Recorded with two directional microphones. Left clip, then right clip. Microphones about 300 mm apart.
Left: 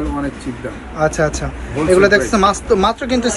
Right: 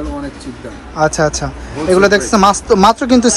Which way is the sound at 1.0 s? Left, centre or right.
Centre.